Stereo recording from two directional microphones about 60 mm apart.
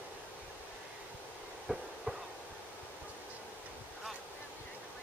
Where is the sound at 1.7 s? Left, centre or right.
Centre.